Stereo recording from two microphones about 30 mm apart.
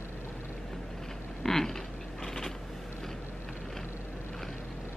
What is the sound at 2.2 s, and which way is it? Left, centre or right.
Vehicle, centre.